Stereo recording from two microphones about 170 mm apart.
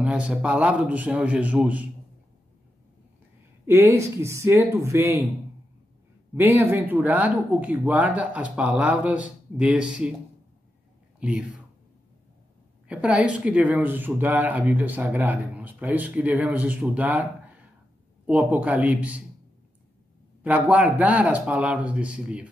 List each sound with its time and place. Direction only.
0.0 s speech: 5° right (ahead or behind)
3.6 s speech: 15° right (ahead or behind)
6.3 s speech: 10° right (ahead or behind)
11.1 s speech: 5° right (ahead or behind)
12.8 s speech: 5° right (ahead or behind)
20.4 s speech: 10° right (ahead or behind)